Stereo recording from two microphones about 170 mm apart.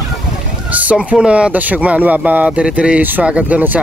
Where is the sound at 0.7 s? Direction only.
10° right (ahead or behind).